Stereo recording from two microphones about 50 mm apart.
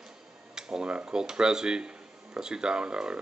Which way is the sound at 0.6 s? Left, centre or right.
Centre.